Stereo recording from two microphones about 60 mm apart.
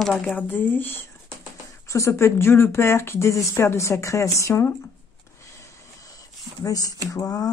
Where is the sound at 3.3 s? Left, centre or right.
Left.